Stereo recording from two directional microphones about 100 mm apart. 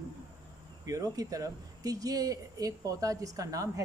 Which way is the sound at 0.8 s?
35° right (ahead or behind).